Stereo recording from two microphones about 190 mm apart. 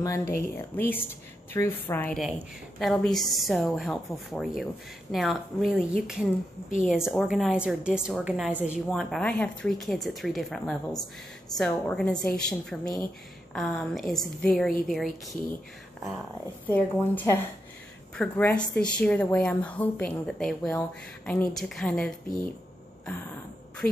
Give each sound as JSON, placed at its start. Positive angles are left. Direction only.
{"t": 0.0, "sound": "a woman's voice", "side_deg": 15}
{"t": 8.9, "sound": "a woman's voice", "side_deg": 5}
{"t": 16.6, "sound": "a woman's voice", "side_deg": 10}
{"t": 23.8, "sound": "a woman's voice", "side_deg": 5}